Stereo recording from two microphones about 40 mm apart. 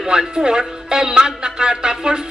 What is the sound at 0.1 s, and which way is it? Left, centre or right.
A woman's voice, centre.